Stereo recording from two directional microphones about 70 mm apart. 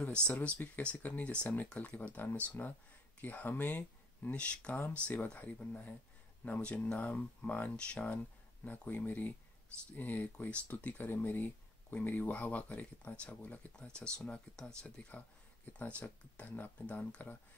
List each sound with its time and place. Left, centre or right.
0.2 s speech: centre
8.6 s speech: left
13.7 s speech: centre